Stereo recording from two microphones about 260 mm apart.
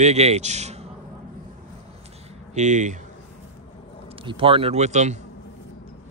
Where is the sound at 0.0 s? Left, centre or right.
Right.